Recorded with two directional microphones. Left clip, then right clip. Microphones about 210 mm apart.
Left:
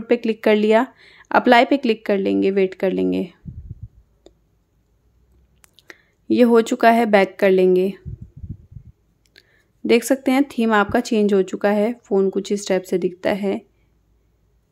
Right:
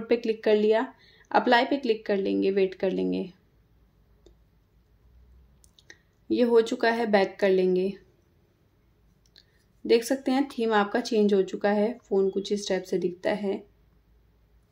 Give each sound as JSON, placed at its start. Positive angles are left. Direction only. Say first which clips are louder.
{"t": 0.0, "sound": "speech", "louder": "left 6 dB", "side_deg": 30}
{"t": 4.2, "sound": "a sound", "louder": "left 9 dB", "side_deg": 35}
{"t": 5.8, "sound": "speech", "louder": "left 8 dB", "side_deg": 35}
{"t": 9.3, "sound": "speech", "louder": "left 7 dB", "side_deg": 35}